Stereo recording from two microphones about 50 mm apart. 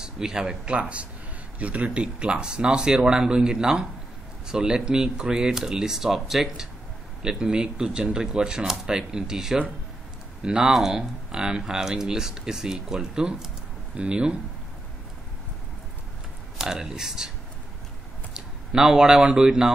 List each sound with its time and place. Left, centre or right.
0.0 s a man's voice: centre
0.7 s speech: right
16.5 s speech: centre
18.3 s speech: centre